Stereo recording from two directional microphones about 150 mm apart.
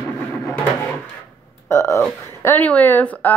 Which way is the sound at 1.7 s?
20° left (ahead or behind).